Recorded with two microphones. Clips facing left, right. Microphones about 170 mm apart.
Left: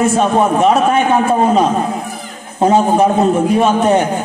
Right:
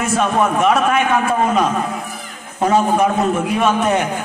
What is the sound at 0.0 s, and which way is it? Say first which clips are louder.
A man's voice: left 4 dB; 30° left (ahead or behind).